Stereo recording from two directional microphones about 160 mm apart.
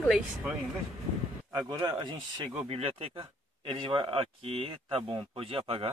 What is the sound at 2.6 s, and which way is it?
Speech, 40° right (ahead or behind).